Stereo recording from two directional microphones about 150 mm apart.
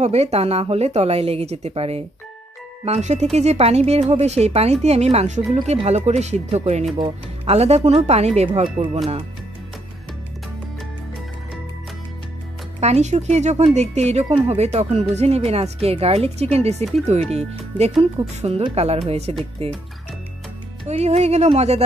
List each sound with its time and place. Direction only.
0.0 s speech: 45° right (ahead or behind)
12.8 s speech: 50° right (ahead or behind)
20.9 s speech: 45° right (ahead or behind)